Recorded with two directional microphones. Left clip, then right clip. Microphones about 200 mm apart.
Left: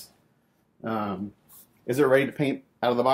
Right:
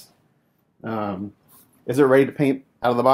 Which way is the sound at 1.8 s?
30° right (ahead or behind).